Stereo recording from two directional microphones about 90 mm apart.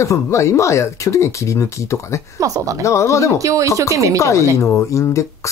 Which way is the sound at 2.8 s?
35° left (ahead or behind).